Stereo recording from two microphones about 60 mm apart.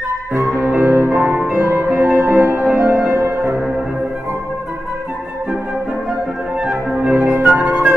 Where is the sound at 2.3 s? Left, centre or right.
Right.